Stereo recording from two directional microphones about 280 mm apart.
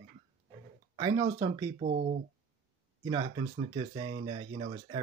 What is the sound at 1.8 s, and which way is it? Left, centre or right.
Speech, right.